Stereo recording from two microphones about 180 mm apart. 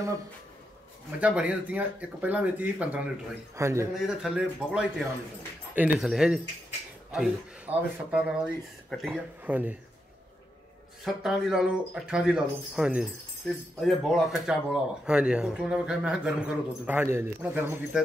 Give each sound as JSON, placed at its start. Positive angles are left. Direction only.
{"t": 1.2, "sound": "speech", "side_deg": -5}
{"t": 3.9, "sound": "speech", "side_deg": -5}
{"t": 11.1, "sound": "speech", "side_deg": 0}